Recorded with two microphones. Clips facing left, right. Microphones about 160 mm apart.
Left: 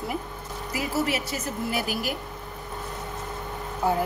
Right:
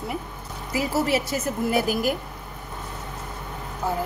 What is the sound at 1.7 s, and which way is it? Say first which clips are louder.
Speech: right 7 dB; 45° right (ahead or behind).